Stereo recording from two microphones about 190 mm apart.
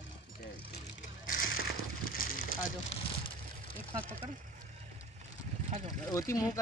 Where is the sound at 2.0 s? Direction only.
50° left (ahead or behind).